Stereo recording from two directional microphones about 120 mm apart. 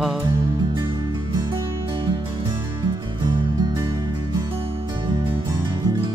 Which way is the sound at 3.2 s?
40° right (ahead or behind).